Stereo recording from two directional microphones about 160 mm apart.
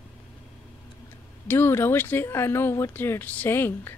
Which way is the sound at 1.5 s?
15° left (ahead or behind).